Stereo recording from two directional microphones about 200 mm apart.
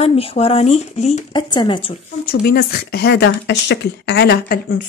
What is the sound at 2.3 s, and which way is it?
Speech, 50° left (ahead or behind).